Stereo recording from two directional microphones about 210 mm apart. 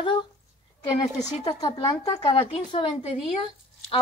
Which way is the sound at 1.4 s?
15° left (ahead or behind).